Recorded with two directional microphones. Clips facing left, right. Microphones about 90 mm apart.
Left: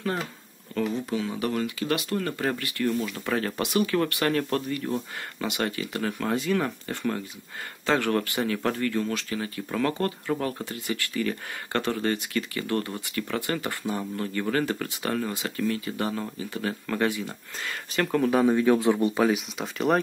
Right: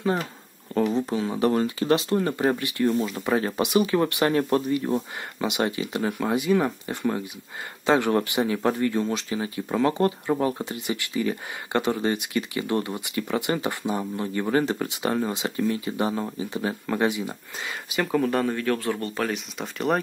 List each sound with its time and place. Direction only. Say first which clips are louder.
0.7 s speech: right 4 dB; 30° right (ahead or behind); by 18.4 s centre (ahead or behind)
18.4 s speech: left 5 dB; 15° left (ahead or behind); by 20.0 s centre (ahead or behind)